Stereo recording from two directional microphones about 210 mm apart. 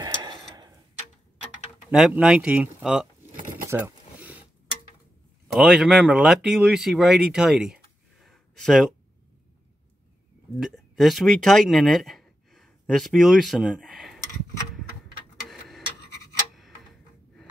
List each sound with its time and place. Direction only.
0.0 s tick-tock: 20° right (ahead or behind)
1.9 s speech: 5° right (ahead or behind)
3.3 s a sound: 40° right (ahead or behind)
3.6 s a sound: 10° right (ahead or behind)
5.7 s speech: centre (ahead or behind)
10.6 s speech: centre (ahead or behind)